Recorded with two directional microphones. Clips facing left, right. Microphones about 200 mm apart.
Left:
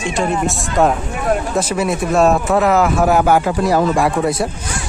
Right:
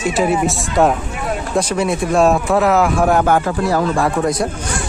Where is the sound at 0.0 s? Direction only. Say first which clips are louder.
Right 2 dB; 5° right (ahead or behind).